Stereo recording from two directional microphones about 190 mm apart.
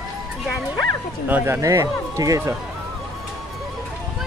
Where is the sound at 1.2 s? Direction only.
10° right (ahead or behind).